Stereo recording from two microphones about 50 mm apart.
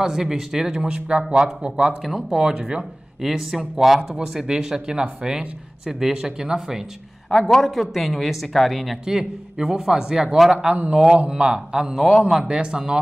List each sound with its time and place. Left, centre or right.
0.0 s speech: centre
2.0 s speech: centre
2.3 s speech: centre
7.2 s speech: centre
9.0 s speech: centre
12.0 s speech: centre
12.4 s speech: centre